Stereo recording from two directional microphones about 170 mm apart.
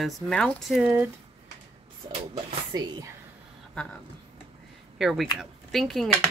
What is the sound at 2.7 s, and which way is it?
Speech, 25° right (ahead or behind).